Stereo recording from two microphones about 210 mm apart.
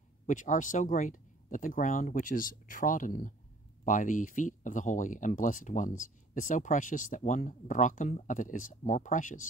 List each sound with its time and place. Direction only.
0.3 s speech: 40° left (ahead or behind)